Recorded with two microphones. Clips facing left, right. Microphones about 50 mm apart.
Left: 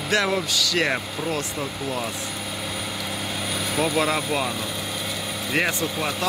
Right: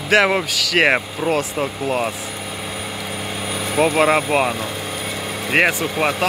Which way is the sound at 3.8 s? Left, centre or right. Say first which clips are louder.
Right 8 dB; right.